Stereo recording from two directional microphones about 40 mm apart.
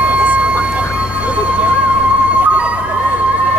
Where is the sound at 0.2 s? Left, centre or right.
Right.